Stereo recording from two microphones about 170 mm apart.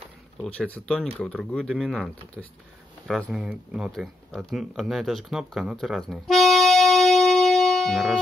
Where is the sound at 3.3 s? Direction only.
5° right (ahead or behind).